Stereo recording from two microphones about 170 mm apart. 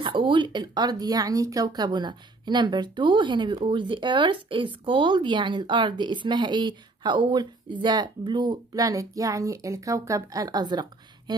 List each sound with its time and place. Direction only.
0.0 s speech: 30° right (ahead or behind)